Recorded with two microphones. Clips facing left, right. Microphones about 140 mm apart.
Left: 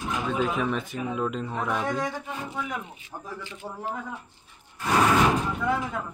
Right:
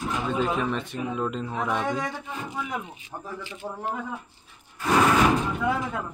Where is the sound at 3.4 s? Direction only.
15° right (ahead or behind).